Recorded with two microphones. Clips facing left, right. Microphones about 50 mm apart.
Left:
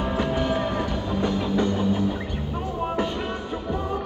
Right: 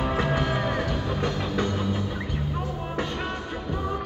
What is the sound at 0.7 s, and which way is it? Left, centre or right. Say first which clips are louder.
Music: left 1 dB; centre.